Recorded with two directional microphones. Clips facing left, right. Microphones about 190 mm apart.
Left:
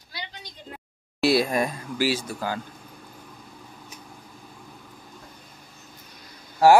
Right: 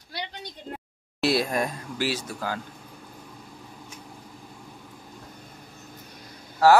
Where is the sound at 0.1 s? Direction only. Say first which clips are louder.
Right 4 dB; 60° right (ahead or behind).